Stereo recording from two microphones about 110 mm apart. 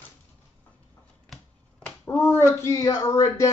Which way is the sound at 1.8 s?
15° left (ahead or behind).